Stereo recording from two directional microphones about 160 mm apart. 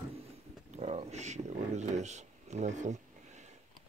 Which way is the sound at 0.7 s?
40° right (ahead or behind).